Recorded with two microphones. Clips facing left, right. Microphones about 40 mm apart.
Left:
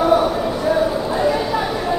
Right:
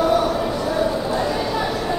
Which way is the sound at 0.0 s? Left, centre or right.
Centre.